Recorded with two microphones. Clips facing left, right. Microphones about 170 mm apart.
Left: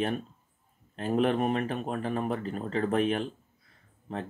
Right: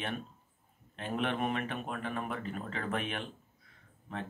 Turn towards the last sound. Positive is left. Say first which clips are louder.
# left 5 dB
turn(degrees=35)  # may be behind; listen again after turning